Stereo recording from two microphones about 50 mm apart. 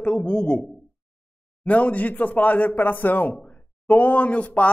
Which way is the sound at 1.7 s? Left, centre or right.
Left.